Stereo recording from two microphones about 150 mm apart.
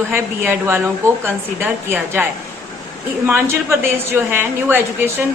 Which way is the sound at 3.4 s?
15° right (ahead or behind).